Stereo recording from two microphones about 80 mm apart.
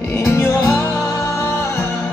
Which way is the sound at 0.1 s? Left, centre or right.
Left.